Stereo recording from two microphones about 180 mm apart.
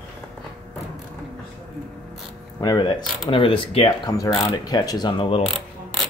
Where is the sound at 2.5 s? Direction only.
25° left (ahead or behind).